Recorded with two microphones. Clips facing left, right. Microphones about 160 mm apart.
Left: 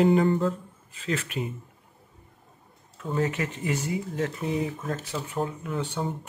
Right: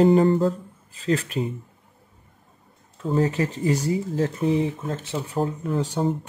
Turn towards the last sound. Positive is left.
turn(degrees=-35)  # may be behind; listen again after turning